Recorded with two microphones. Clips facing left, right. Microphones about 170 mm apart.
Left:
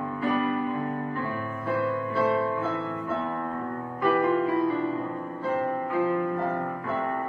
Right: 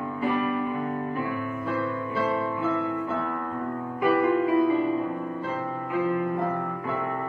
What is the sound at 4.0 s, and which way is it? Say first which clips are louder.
Music: right 1 dB; 10° right (ahead or behind).